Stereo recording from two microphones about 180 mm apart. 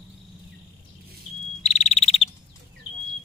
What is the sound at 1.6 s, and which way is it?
Frog, 40° left (ahead or behind).